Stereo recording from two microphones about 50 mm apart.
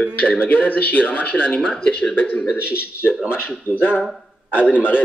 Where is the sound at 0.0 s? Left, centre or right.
Left.